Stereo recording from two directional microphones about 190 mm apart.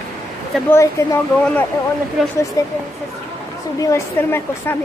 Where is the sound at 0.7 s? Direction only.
15° left (ahead or behind).